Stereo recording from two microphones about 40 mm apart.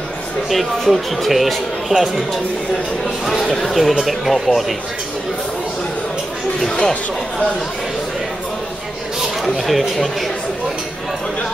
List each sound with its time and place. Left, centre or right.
0.5 s speech: centre
3.4 s speech: centre
6.7 s speech: left
9.4 s speech: centre